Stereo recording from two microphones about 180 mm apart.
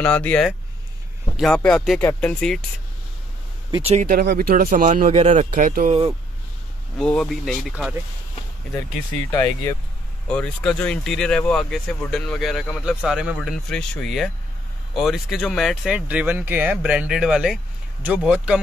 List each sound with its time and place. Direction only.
0.0 s speech: 5° left (ahead or behind)
3.7 s speech: 35° right (ahead or behind)
4.0 s speech: 55° right (ahead or behind); by 5.5 s 40° right (ahead or behind)
5.5 s speech: 50° right (ahead or behind)
7.0 s speech: 5° left (ahead or behind)
9.3 s speech: 15° left (ahead or behind)
10.2 s speech: 5° left (ahead or behind)